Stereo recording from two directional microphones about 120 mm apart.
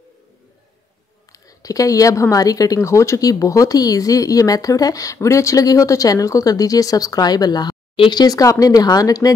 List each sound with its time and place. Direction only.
1.3 s a woman's voice: 30° left (ahead or behind)